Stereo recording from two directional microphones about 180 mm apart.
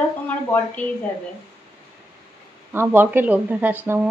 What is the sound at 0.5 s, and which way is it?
Speech, 10° left (ahead or behind).